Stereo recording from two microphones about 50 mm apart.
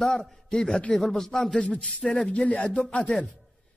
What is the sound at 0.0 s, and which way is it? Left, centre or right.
Speech, centre.